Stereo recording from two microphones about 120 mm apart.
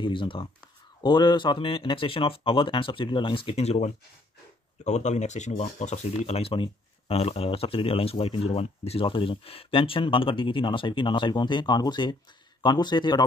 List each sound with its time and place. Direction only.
0.0 s speech: 45° left (ahead or behind)